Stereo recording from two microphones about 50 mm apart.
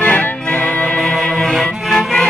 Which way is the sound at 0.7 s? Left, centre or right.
Centre.